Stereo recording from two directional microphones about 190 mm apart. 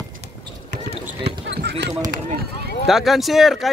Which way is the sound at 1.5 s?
65° right (ahead or behind).